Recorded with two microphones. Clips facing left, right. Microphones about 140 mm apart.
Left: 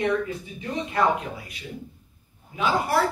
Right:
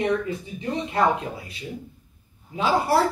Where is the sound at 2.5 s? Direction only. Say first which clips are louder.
Right 2 dB; 30° right (ahead or behind).